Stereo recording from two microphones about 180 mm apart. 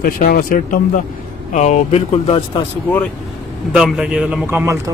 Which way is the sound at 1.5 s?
40° left (ahead or behind).